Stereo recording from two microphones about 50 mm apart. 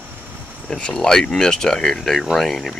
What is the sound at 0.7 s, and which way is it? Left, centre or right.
Speech, centre.